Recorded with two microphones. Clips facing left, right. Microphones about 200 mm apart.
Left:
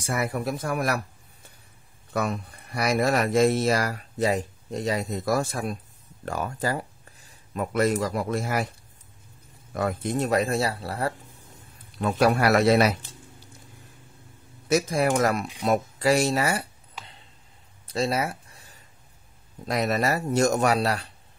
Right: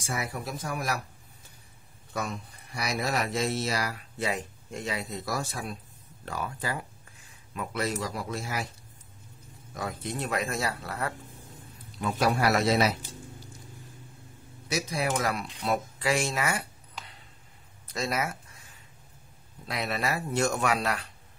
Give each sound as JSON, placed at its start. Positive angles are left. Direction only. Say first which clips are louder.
{"t": 0.0, "sound": "speech", "louder": "left 7 dB", "side_deg": 55}
{"t": 2.1, "sound": "speech", "louder": "left 7 dB", "side_deg": 60}
{"t": 9.8, "sound": "speech", "louder": "left 8 dB", "side_deg": 55}
{"t": 12.0, "sound": "speech", "louder": "left 5 dB", "side_deg": 60}
{"t": 14.7, "sound": "speech", "louder": "left 7 dB", "side_deg": 50}
{"t": 17.8, "sound": "a sound", "louder": "left 5 dB", "side_deg": 30}
{"t": 19.6, "sound": "speech", "louder": "left 7 dB", "side_deg": 45}